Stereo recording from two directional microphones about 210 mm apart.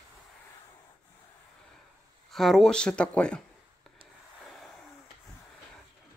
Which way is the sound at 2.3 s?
Centre (ahead or behind).